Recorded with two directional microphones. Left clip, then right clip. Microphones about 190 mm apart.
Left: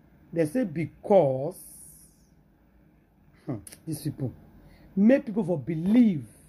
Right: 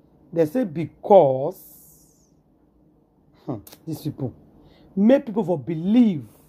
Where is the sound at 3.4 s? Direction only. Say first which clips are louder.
Right 5 dB; 5° right (ahead or behind).